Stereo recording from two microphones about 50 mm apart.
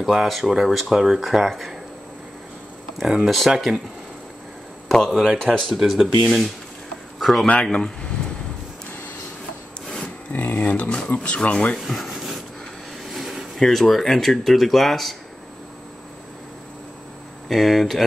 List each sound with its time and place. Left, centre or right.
0.0 s speech: centre
3.3 s speech: centre
4.8 s a sound: centre
5.4 s speech: centre
5.8 s speech: centre
7.7 s speech: left
10.3 s speech: left
11.8 s rub: centre
13.0 s a sound: centre
13.6 s speech: centre
17.5 s speech: centre